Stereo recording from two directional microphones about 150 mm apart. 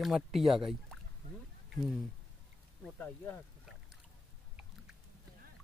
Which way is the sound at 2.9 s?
15° left (ahead or behind).